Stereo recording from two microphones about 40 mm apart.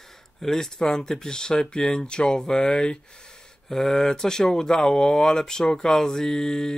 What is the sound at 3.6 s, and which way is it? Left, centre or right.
Speech, centre.